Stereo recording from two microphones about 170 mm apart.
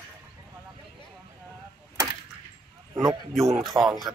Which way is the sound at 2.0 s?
15° right (ahead or behind).